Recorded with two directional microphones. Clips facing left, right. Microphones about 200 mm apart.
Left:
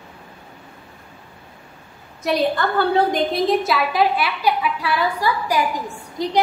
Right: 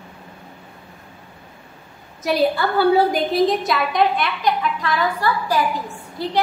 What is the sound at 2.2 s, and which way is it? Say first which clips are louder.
A woman's voice: right 1 dB; 5° right (ahead or behind).